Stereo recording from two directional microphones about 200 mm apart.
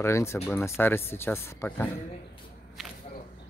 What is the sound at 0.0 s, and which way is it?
Speech, 15° left (ahead or behind).